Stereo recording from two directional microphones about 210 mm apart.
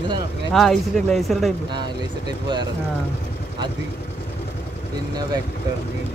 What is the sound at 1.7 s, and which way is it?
Speech, 20° right (ahead or behind).